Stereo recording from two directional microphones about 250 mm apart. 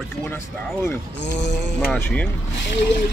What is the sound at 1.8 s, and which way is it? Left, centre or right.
Speech, centre.